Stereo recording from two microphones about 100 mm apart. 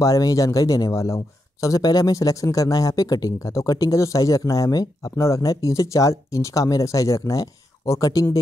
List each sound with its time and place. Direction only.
0.0 s speech: 35° left (ahead or behind)